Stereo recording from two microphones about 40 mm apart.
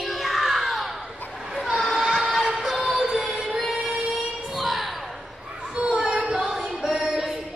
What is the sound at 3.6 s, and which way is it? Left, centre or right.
Music, centre.